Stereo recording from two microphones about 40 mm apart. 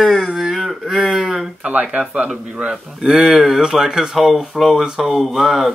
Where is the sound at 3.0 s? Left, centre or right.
Centre.